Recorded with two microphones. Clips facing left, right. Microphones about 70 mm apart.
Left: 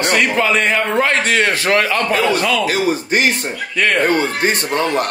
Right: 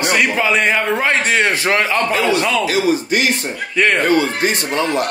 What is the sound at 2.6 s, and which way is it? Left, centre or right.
Speech, left.